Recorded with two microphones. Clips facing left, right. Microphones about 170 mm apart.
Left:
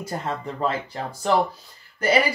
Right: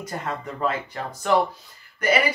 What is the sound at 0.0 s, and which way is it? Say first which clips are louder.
Speech: left 2 dB; 30° left (ahead or behind).